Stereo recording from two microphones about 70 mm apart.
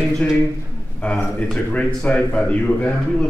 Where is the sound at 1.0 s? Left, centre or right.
Centre.